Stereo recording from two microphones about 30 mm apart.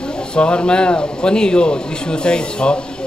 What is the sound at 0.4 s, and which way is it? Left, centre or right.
A man's voice, left.